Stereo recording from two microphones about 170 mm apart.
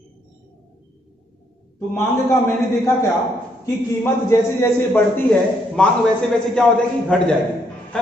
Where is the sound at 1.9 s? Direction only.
15° left (ahead or behind).